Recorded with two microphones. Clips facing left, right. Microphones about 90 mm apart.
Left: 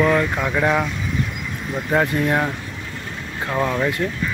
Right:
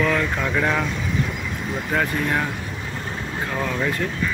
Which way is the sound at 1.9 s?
25° left (ahead or behind).